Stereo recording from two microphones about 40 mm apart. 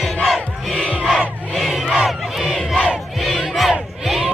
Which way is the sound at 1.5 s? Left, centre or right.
Centre.